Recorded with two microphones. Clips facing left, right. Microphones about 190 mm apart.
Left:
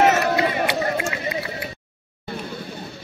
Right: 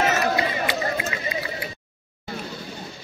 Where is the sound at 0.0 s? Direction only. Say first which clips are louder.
Left 4 dB; 60° left (ahead or behind).